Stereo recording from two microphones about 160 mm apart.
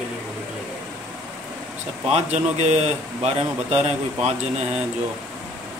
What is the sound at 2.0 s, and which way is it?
Speech, 45° right (ahead or behind).